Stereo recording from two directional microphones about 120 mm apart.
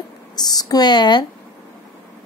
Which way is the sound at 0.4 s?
35° left (ahead or behind).